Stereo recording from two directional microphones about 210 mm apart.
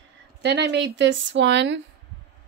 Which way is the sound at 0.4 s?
55° right (ahead or behind).